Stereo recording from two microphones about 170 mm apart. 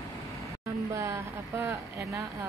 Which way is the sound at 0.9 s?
15° right (ahead or behind).